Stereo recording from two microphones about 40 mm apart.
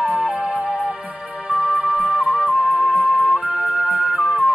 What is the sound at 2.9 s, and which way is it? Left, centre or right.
Music, right.